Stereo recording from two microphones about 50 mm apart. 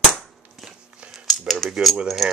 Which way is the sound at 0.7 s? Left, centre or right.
Right.